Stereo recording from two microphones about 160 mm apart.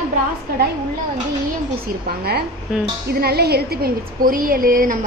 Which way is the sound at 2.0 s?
80° right.